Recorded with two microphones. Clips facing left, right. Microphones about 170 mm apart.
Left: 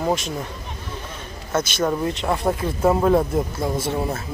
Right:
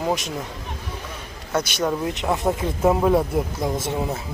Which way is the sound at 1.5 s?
15° right (ahead or behind).